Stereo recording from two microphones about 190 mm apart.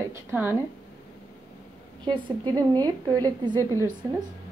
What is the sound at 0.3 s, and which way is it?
Speech, 10° right (ahead or behind).